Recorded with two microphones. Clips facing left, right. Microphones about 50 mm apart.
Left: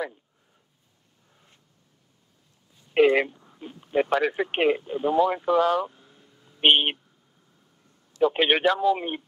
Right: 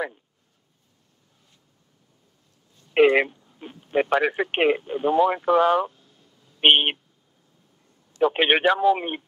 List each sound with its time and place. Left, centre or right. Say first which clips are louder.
2.9 s speech: right 2 dB; right
5.9 s a sound: right 2 dB; left
6.6 s speech: right 2 dB; right
8.2 s speech: right 1 dB; right